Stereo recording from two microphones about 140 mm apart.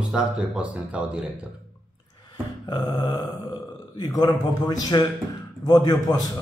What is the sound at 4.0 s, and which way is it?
A man's voice, 30° left (ahead or behind).